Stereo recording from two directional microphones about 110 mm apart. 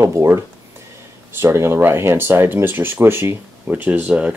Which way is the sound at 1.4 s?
25° right (ahead or behind).